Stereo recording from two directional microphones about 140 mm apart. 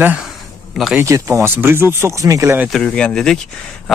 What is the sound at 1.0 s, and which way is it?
Speech, 20° right (ahead or behind).